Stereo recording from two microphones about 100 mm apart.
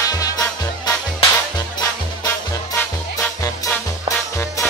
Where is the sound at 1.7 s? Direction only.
35° left (ahead or behind).